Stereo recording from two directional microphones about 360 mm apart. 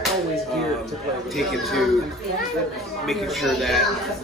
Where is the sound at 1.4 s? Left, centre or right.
Centre.